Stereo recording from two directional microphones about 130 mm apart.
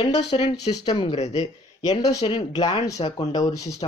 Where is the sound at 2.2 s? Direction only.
35° left (ahead or behind).